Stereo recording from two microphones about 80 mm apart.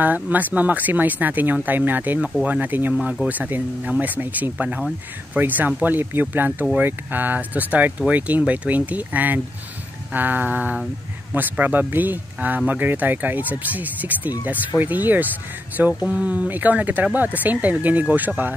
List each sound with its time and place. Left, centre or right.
0.0 s speech: right